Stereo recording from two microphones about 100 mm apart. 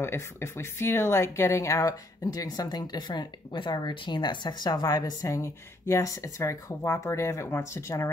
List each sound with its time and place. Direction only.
0.0 s speech: 25° left (ahead or behind)